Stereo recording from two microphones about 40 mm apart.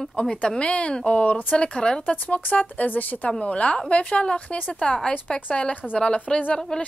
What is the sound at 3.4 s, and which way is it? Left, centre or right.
A woman's voice, left.